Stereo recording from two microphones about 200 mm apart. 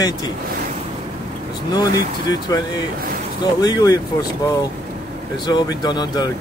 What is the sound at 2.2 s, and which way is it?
Speech, 20° left (ahead or behind).